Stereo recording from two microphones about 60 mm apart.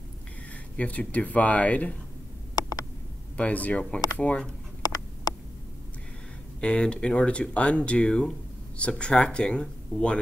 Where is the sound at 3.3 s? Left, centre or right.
Left.